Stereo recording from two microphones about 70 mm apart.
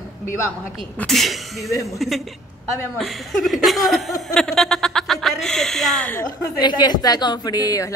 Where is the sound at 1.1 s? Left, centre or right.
Centre.